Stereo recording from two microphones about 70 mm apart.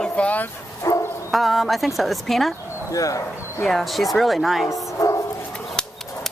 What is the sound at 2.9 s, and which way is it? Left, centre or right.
Speech, left.